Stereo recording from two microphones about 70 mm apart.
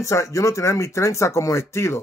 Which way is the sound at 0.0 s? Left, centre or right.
Left.